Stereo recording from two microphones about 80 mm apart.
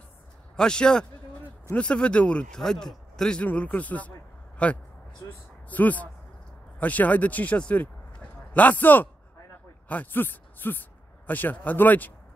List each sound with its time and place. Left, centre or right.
0.6 s speech: centre